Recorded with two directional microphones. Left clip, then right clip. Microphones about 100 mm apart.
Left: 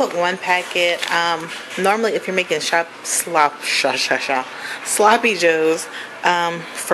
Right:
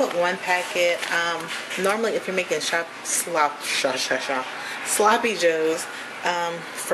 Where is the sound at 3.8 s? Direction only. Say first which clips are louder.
Left 4 dB; 15° left (ahead or behind).